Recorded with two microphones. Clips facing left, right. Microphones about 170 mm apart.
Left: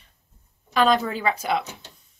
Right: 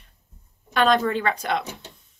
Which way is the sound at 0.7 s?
Centre (ahead or behind).